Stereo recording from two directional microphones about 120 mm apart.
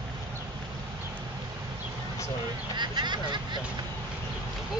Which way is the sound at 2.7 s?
40° right (ahead or behind).